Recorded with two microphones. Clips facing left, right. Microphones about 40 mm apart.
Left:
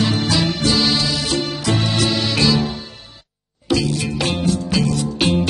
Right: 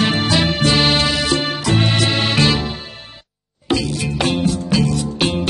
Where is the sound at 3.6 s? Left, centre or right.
Right.